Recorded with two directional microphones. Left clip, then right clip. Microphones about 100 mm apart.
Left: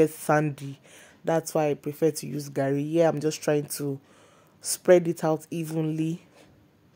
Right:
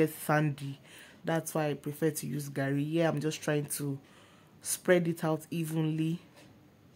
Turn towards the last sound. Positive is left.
turn(degrees=40)  # may be behind; listen again after turning